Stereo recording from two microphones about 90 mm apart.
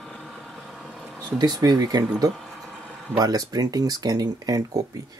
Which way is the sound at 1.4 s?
45° right (ahead or behind).